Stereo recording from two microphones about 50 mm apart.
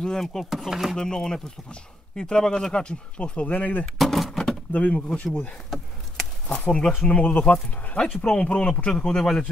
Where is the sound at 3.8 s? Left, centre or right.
Centre.